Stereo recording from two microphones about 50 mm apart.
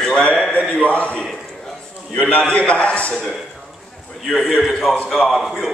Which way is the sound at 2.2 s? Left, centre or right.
Left.